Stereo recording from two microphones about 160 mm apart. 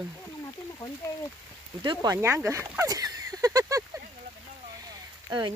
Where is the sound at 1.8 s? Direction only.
20° right (ahead or behind).